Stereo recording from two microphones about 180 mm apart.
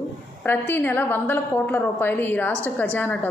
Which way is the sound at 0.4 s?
10° left (ahead or behind).